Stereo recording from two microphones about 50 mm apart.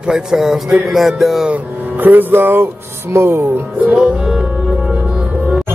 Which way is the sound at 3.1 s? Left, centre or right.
Right.